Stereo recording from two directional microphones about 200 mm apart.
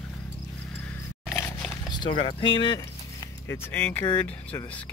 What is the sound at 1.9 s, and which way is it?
Keys jangling, 20° left (ahead or behind).